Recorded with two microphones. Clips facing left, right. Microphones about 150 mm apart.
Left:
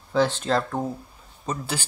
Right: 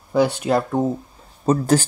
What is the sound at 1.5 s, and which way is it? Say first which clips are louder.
Speech: right 13 dB; 40° right (ahead or behind).